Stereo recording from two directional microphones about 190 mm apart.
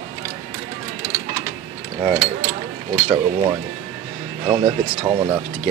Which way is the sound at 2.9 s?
15° right (ahead or behind).